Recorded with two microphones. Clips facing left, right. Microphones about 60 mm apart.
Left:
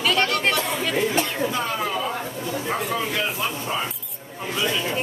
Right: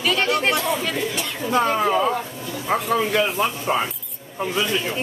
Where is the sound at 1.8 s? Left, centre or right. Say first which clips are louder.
Right 6 dB; right.